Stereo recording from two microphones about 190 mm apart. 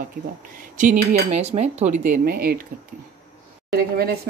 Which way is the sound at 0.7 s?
45° right (ahead or behind).